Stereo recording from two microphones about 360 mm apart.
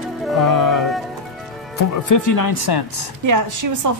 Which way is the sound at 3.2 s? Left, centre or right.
Right.